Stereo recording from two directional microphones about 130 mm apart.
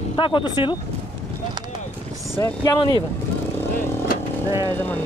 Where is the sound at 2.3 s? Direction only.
25° left (ahead or behind).